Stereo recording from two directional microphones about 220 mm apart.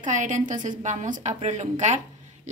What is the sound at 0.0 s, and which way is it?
A woman's voice, 35° right (ahead or behind).